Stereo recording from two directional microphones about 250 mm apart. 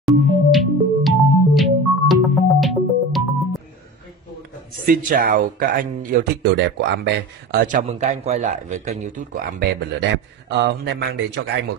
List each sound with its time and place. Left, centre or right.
0.0 s music: centre
4.8 s speech: right
7.6 s speech: right